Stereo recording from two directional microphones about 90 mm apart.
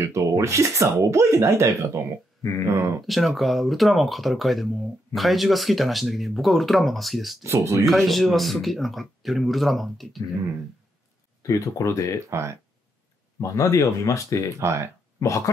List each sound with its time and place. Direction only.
0.0 s speech: 35° right (ahead or behind)
3.1 s speech: centre (ahead or behind)
7.4 s speech: 35° right (ahead or behind)
7.8 s speech: centre (ahead or behind)
11.4 s speech: 35° left (ahead or behind)
12.3 s speech: 30° right (ahead or behind)
13.4 s speech: 35° left (ahead or behind)
14.5 s speech: 35° right (ahead or behind)
15.1 s speech: 35° left (ahead or behind)